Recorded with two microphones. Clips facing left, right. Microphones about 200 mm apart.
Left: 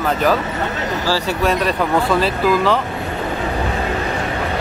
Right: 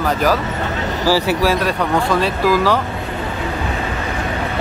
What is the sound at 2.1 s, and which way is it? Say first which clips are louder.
Speech: even; centre (ahead or behind).